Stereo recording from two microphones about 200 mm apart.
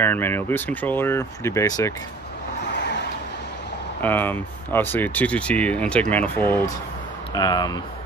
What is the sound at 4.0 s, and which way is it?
Speech, 10° left (ahead or behind).